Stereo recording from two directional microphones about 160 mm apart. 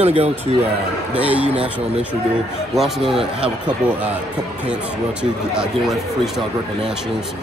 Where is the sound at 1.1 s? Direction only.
10° right (ahead or behind).